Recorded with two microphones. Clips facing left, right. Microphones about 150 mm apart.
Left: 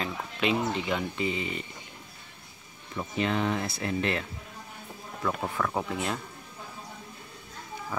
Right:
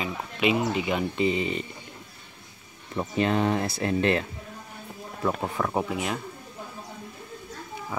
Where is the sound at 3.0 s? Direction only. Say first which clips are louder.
Right 4 dB; 40° right (ahead or behind).